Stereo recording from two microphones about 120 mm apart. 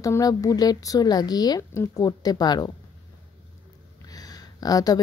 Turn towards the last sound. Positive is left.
turn(degrees=30)  # may be behind; listen again after turning